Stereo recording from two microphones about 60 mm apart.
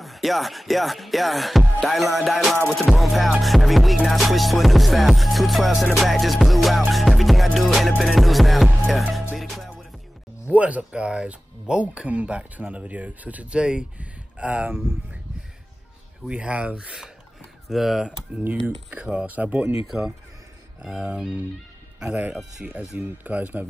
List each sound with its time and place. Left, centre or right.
0.0 s music: centre
10.5 s speech: right
16.3 s speech: centre
17.6 s music: centre
18.4 s speech: right
20.8 s music: centre
22.1 s speech: right
22.6 s music: centre
22.9 s speech: right